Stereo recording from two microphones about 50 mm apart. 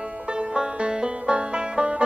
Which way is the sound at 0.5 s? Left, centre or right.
Centre.